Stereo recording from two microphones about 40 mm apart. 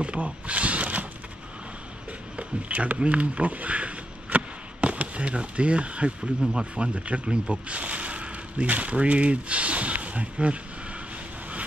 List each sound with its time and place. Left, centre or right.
0.0 s speech: right
2.3 s speech: right
7.5 s a sound: right
8.6 s speech: right